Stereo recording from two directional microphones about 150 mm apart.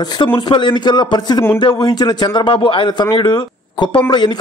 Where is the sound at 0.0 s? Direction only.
30° left (ahead or behind).